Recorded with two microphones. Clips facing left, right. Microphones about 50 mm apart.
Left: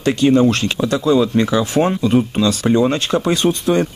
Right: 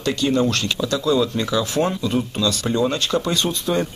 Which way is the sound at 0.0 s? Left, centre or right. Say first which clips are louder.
Left 6 dB; left.